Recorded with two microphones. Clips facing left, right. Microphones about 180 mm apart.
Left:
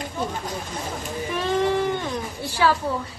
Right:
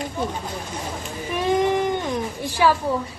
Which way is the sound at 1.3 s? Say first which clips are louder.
Right 2 dB; 15° right (ahead or behind).